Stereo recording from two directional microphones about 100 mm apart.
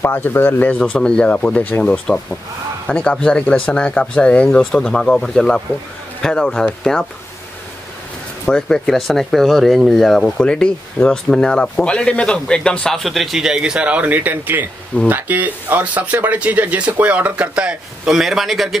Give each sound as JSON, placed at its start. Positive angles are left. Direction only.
{"t": 0.0, "sound": "speech", "side_deg": 25}
{"t": 8.5, "sound": "speech", "side_deg": 10}